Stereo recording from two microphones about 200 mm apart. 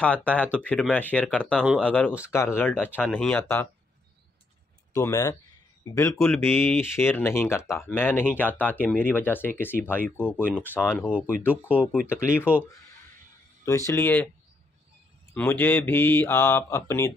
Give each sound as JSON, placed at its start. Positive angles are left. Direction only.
{"t": 0.0, "sound": "speech", "side_deg": 5}
{"t": 4.9, "sound": "speech", "side_deg": 15}
{"t": 11.4, "sound": "speech", "side_deg": -5}
{"t": 13.7, "sound": "speech", "side_deg": 15}
{"t": 15.3, "sound": "speech", "side_deg": 10}